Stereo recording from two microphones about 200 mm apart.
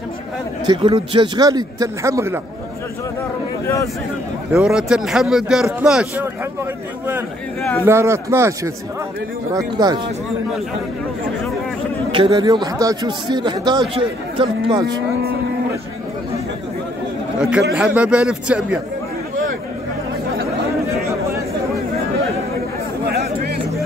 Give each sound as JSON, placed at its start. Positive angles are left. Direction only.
{"t": 0.7, "sound": "speech", "side_deg": -25}
{"t": 3.6, "sound": "speech", "side_deg": 15}
{"t": 4.5, "sound": "speech", "side_deg": -5}
{"t": 7.8, "sound": "a man's voice", "side_deg": -15}
{"t": 12.1, "sound": "speech", "side_deg": -25}
{"t": 17.4, "sound": "a man's voice", "side_deg": -5}